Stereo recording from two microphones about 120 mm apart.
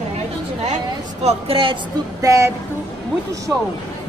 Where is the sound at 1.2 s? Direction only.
50° right (ahead or behind).